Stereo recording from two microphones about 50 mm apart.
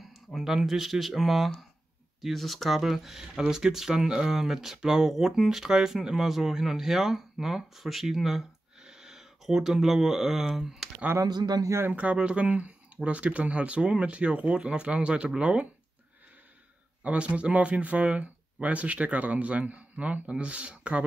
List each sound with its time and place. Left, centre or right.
0.0 s speech: centre
11.1 s speech: right
11.9 s speech: right
17.0 s speech: right